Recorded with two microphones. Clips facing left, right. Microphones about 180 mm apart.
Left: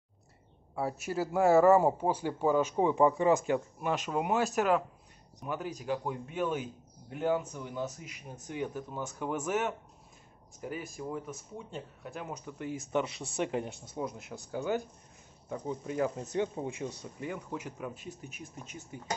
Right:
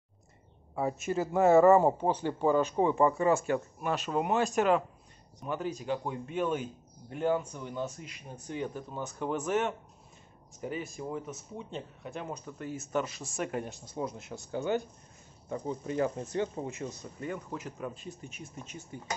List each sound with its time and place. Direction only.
1.0 s speech: 5° left (ahead or behind)
13.9 s speech: centre (ahead or behind)